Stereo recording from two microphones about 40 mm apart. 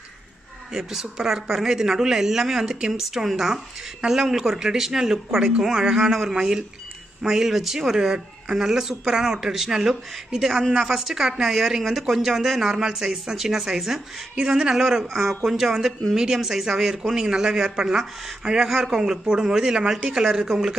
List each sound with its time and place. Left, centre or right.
0.7 s speech: centre
14.3 s speech: centre
17.1 s speech: centre